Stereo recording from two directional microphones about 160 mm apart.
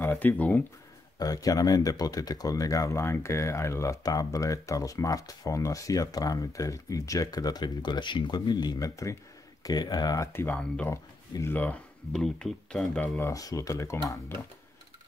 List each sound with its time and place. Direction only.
0.0 s speech: 10° left (ahead or behind)
1.2 s speech: 25° left (ahead or behind)